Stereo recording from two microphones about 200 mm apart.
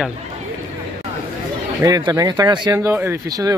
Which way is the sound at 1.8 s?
15° right (ahead or behind).